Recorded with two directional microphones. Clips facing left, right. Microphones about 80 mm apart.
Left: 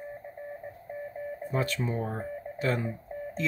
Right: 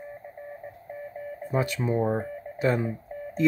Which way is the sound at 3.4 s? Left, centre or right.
Right.